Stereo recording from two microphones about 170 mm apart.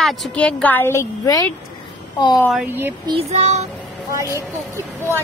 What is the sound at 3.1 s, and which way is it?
Child singing, 35° right (ahead or behind).